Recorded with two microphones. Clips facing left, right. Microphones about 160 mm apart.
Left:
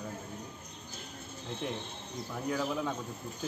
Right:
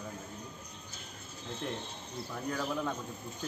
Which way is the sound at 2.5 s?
5° left (ahead or behind).